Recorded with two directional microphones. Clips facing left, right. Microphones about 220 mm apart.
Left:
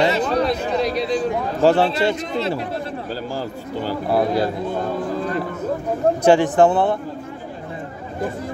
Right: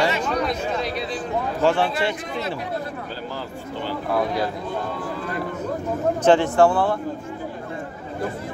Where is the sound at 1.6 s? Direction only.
40° left (ahead or behind).